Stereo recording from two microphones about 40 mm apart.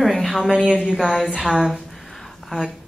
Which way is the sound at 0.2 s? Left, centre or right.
Centre.